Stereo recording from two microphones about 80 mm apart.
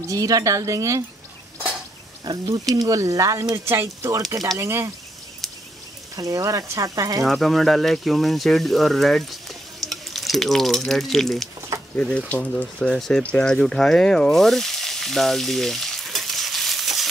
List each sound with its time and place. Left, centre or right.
0.1 s speech: right
2.7 s speech: right
4.3 s speech: right
6.1 s speech: right
7.2 s speech: centre
12.0 s speech: centre